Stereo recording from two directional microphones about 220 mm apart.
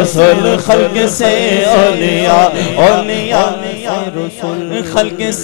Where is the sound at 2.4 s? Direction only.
35° left (ahead or behind).